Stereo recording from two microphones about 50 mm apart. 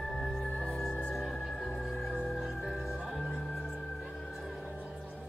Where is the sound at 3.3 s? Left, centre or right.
Centre.